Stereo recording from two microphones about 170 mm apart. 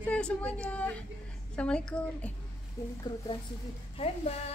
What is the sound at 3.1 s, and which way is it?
Speech, 25° left (ahead or behind).